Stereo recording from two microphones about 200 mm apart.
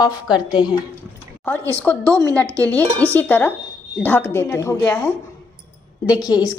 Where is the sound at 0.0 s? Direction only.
20° left (ahead or behind).